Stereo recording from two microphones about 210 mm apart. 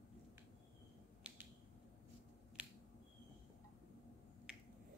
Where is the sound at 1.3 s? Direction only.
5° right (ahead or behind).